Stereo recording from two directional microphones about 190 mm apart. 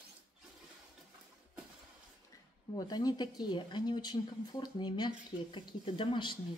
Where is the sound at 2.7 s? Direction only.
20° left (ahead or behind).